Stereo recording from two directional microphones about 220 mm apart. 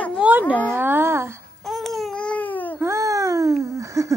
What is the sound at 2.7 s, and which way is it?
Wail, 10° right (ahead or behind).